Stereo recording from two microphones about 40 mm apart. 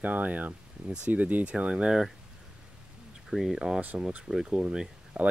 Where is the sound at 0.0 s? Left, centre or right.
Right.